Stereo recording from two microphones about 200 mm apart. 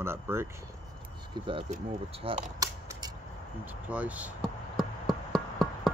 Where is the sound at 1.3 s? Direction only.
25° right (ahead or behind).